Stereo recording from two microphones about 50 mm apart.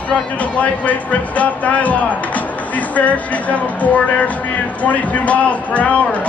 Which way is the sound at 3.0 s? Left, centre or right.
Left.